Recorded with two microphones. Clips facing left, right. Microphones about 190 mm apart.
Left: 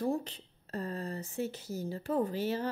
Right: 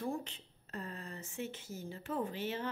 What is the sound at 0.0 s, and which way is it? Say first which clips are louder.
A woman's voice: left 6 dB; 35° left (ahead or behind).